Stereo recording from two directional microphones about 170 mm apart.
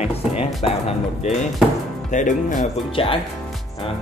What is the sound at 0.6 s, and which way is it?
A man's voice, 40° left (ahead or behind).